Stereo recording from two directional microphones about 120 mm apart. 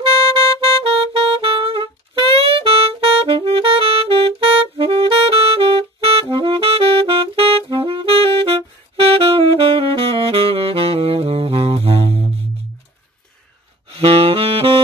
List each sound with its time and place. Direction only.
0.8 s saxophone: 50° right (ahead or behind)
13.9 s saxophone: 50° right (ahead or behind)